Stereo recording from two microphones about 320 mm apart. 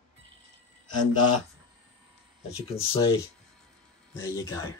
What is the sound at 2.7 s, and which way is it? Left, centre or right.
Speech, centre.